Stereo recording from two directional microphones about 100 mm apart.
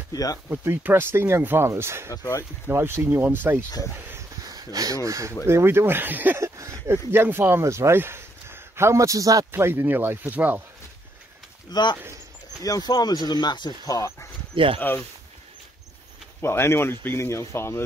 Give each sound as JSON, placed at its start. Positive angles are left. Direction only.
{"t": 0.1, "sound": "speech", "side_deg": 35}
{"t": 0.5, "sound": "speech", "side_deg": -20}
{"t": 2.0, "sound": "speech", "side_deg": 30}
{"t": 2.6, "sound": "speech", "side_deg": -25}
{"t": 4.5, "sound": "speech", "side_deg": -40}
{"t": 6.4, "sound": "speech", "side_deg": -30}
{"t": 9.5, "sound": "speech", "side_deg": -25}
{"t": 11.7, "sound": "speech", "side_deg": 50}
{"t": 12.6, "sound": "speech", "side_deg": 40}
{"t": 14.5, "sound": "speech", "side_deg": -60}
{"t": 14.8, "sound": "speech", "side_deg": 20}
{"t": 16.3, "sound": "speech", "side_deg": 25}